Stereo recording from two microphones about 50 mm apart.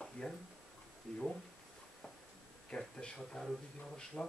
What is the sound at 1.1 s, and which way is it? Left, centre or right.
Speech, centre.